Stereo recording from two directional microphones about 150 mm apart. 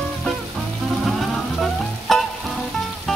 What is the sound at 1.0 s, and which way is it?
Frying, centre (ahead or behind).